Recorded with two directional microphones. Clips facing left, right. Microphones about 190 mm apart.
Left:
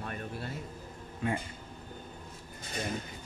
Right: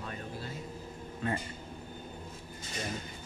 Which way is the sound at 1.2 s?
10° left (ahead or behind).